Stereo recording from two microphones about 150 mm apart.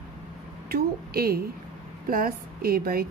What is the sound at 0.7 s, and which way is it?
Speech, 90° right.